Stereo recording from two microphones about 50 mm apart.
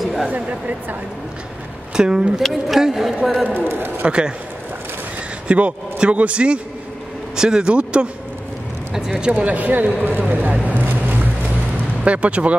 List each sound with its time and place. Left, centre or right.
0.0 s a sound: centre
0.3 s speech: right
2.0 s speech: centre
3.4 s a man's voice: right
4.0 s a man's voice: centre
5.5 s a man's voice: right
8.9 s speech: centre
9.3 s speech: right
12.0 s speech: right